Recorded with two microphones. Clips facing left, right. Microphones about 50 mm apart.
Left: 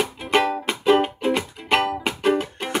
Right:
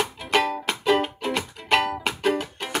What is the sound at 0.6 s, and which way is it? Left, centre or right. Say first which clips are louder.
Music: left 4 dB; centre.